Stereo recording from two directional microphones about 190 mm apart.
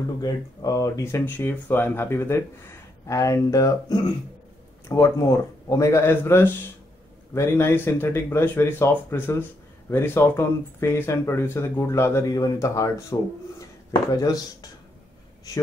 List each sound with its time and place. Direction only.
0.2 s speech: 20° left (ahead or behind)
14.1 s speech: 20° left (ahead or behind)